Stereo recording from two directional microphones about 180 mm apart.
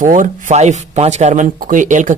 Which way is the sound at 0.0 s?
45° right (ahead or behind).